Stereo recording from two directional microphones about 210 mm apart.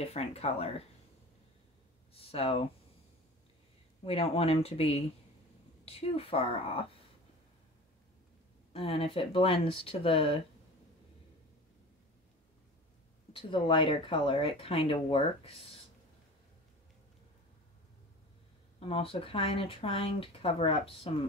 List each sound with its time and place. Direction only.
0.0 s speech: 30° left (ahead or behind)
2.1 s speech: 25° left (ahead or behind)
4.0 s speech: 30° left (ahead or behind)
8.7 s speech: 25° left (ahead or behind)
13.3 s speech: 25° left (ahead or behind)
18.8 s speech: 25° left (ahead or behind)